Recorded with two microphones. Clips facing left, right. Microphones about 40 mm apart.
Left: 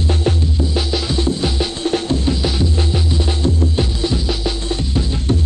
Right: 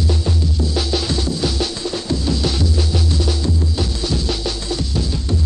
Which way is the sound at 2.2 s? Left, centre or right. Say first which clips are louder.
Left 1 dB; left.